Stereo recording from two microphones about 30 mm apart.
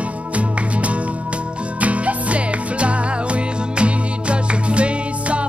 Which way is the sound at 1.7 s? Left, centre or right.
Right.